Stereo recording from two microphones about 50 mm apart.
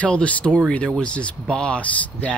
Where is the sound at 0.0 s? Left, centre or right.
Left.